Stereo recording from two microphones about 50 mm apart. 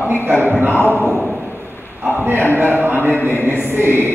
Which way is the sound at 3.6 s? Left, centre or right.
Right.